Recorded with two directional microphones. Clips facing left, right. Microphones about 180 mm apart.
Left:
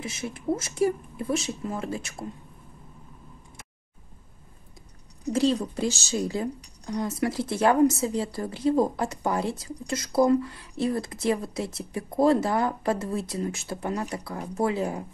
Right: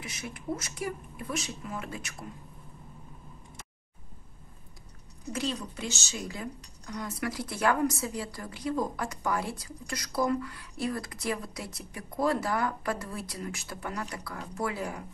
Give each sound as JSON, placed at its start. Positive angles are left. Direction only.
{"t": 0.0, "sound": "speech", "side_deg": 25}
{"t": 5.3, "sound": "speech", "side_deg": 35}